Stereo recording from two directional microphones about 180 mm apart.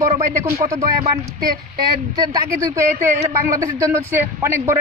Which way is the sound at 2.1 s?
20° right (ahead or behind).